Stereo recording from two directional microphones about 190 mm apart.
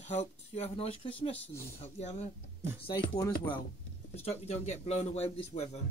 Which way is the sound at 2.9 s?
20° left (ahead or behind).